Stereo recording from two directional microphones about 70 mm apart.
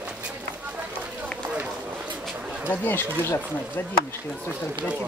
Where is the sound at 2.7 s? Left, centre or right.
Left.